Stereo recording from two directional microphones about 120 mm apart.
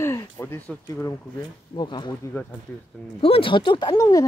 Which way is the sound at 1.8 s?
40° left (ahead or behind).